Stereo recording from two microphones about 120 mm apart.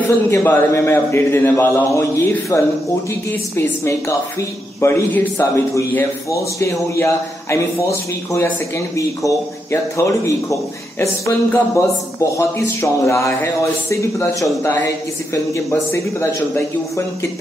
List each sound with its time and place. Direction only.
0.3 s a man's voice: 20° left (ahead or behind)